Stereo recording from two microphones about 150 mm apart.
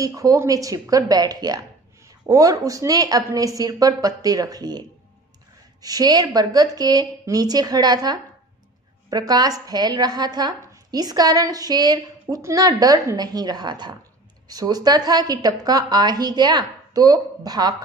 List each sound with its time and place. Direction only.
0.0 s a woman's voice: 25° right (ahead or behind)